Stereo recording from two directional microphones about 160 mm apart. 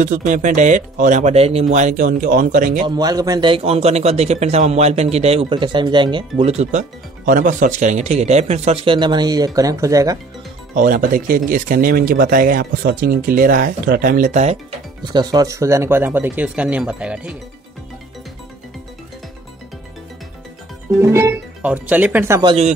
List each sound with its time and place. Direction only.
0.0 s speech: 55° right (ahead or behind)
2.9 s a man's voice: 25° right (ahead or behind)
10.7 s speech: 60° right (ahead or behind)
15.1 s speech: 20° right (ahead or behind); by 17.4 s 5° right (ahead or behind)
21.0 s speech: 15° right (ahead or behind)